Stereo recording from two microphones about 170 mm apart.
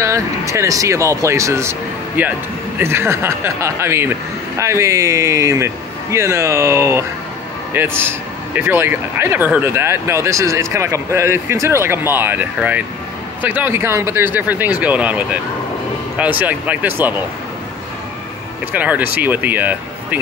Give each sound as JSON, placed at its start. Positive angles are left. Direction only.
{"t": 0.0, "sound": "speech", "side_deg": -15}
{"t": 18.7, "sound": "speech", "side_deg": -10}